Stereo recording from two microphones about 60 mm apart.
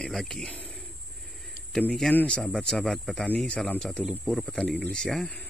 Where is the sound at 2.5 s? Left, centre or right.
Centre.